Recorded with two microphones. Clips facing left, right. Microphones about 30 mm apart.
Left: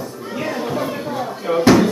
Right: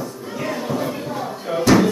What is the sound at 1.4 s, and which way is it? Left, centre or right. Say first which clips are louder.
Slam: left 4 dB; centre.